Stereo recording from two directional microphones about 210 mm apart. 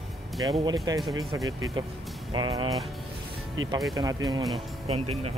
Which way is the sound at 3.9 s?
20° right (ahead or behind).